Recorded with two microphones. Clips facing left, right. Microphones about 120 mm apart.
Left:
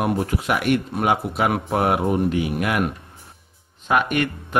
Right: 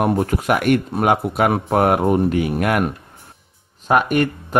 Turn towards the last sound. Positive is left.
turn(degrees=-40)  # may be behind; listen again after turning